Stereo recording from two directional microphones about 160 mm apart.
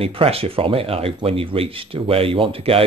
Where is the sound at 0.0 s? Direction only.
35° right (ahead or behind).